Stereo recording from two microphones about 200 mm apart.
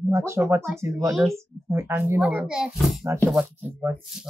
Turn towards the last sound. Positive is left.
turn(degrees=-5)  # may be behind; listen again after turning